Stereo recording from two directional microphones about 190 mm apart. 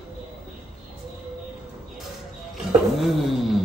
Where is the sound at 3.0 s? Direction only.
Centre (ahead or behind).